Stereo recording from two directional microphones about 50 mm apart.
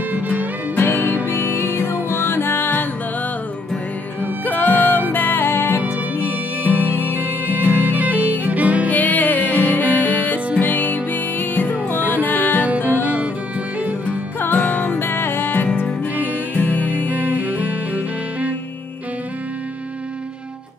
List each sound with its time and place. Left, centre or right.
0.1 s music: right
0.7 s music: left
4.2 s music: left
6.9 s music: left
8.0 s music: right
8.8 s music: left
12.6 s music: right
14.4 s music: left
15.0 s music: left
17.1 s music: right